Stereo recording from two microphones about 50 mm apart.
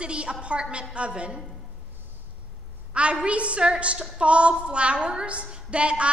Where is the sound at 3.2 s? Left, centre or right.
Right.